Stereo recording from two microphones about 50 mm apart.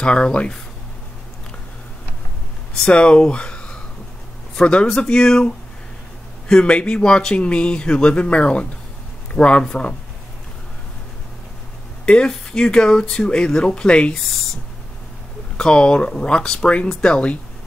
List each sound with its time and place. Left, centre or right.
0.0 s speech: centre
2.9 s speech: centre
6.5 s speech: left
12.1 s speech: centre
14.1 s speech: centre
15.5 s speech: centre